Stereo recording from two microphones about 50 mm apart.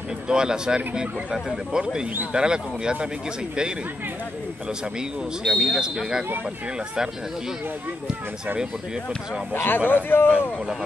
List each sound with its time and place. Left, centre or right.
0.3 s speech: centre
5.4 s speech: centre
9.5 s a man's voice: left